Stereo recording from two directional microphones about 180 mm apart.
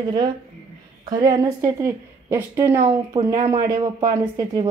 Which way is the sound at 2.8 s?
25° right (ahead or behind).